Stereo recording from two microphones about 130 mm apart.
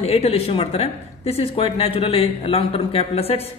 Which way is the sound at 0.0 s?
50° left (ahead or behind).